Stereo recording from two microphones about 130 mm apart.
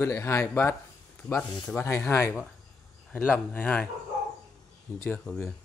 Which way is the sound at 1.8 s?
20° left (ahead or behind).